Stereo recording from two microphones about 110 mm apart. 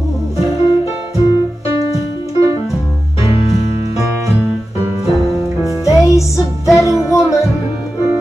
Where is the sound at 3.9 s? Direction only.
30° right (ahead or behind).